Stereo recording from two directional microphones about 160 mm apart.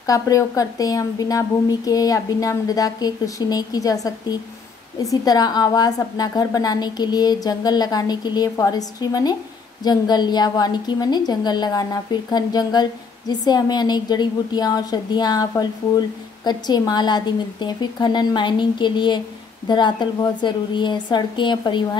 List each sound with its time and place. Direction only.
0.0 s a woman's voice: 20° left (ahead or behind)